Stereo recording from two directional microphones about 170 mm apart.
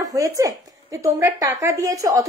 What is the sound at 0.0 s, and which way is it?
A woman's voice, 20° right (ahead or behind).